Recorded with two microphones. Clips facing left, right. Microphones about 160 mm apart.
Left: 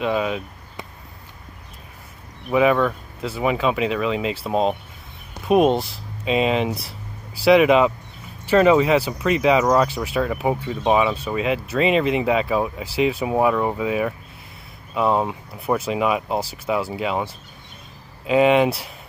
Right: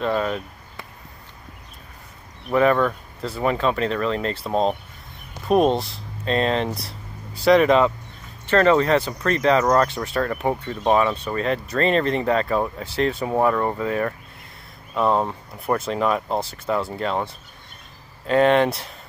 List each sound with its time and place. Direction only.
0.0 s speech: 5° left (ahead or behind)
2.5 s speech: 5° left (ahead or behind)